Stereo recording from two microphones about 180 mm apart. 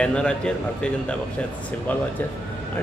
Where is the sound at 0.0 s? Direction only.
5° left (ahead or behind).